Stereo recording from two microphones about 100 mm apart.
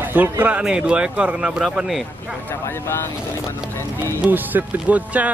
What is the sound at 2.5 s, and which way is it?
Speech, 25° left (ahead or behind).